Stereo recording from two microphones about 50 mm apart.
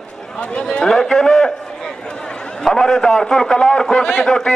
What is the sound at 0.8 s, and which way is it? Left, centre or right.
Speech, centre.